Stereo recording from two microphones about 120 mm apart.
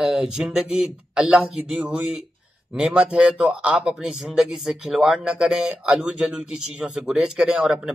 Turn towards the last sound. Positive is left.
turn(degrees=-5)  # may be behind; listen again after turning